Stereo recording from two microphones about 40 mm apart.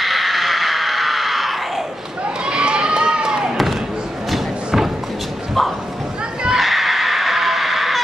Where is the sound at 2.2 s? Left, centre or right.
Right.